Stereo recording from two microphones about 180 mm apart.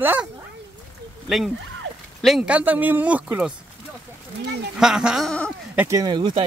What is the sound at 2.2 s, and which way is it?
Speech, 5° right (ahead or behind).